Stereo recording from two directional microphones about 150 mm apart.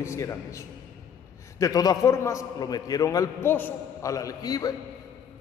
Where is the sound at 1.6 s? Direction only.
25° left (ahead or behind).